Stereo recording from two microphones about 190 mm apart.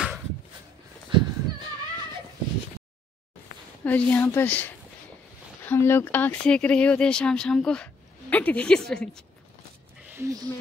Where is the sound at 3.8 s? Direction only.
10° left (ahead or behind).